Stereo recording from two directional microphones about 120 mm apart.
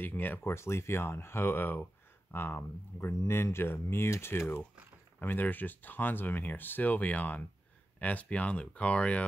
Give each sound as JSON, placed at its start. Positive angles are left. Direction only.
{"t": 0.0, "sound": "speech", "side_deg": 15}